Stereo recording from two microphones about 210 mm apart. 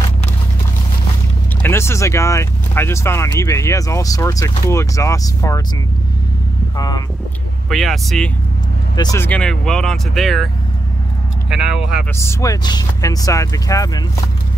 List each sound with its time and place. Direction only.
1.6 s speech: 10° left (ahead or behind)
7.7 s speech: centre (ahead or behind)
8.9 s speech: 15° left (ahead or behind); by 12.0 s 5° right (ahead or behind)
12.2 s speech: 15° left (ahead or behind)